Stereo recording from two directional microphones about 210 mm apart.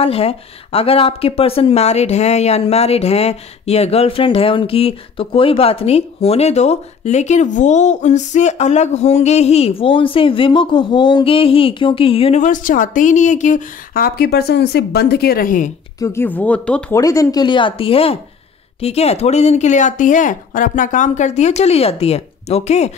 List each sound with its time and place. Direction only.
0.0 s speech: 30° left (ahead or behind)
16.0 s speech: 10° left (ahead or behind)
17.0 s speech: 15° left (ahead or behind); by 22.9 s 30° left (ahead or behind)